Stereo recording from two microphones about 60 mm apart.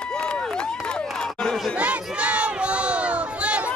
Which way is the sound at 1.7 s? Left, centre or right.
Right.